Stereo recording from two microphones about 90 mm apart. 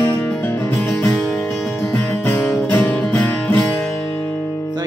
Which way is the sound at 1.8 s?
35° left (ahead or behind).